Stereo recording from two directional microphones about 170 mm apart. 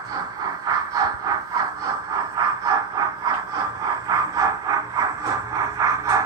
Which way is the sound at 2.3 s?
20° right (ahead or behind).